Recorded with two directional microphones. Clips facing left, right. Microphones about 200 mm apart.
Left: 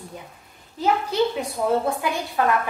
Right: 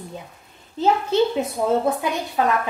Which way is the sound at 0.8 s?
25° right (ahead or behind).